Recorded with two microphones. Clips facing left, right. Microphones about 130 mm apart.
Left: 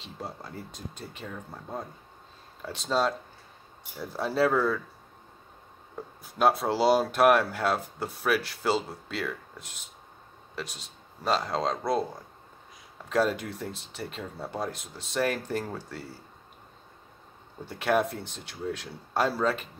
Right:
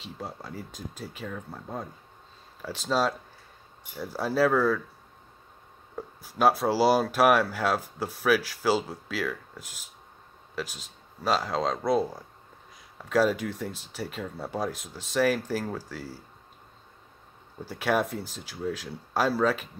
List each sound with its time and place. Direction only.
0.0 s speech: centre (ahead or behind)
6.2 s speech: centre (ahead or behind)
13.1 s speech: centre (ahead or behind)
17.6 s speech: centre (ahead or behind)